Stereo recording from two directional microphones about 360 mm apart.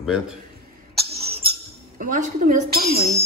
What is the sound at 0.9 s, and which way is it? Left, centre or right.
Cough, right.